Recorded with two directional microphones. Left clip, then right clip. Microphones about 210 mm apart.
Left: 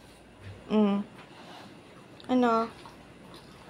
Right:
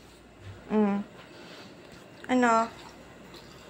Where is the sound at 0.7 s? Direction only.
15° left (ahead or behind).